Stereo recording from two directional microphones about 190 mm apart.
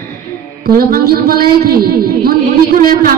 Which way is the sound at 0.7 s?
50° right (ahead or behind).